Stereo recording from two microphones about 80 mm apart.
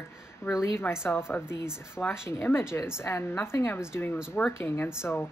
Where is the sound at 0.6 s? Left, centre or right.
Left.